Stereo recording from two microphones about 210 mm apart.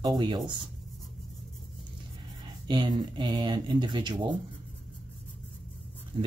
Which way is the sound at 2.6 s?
20° right (ahead or behind).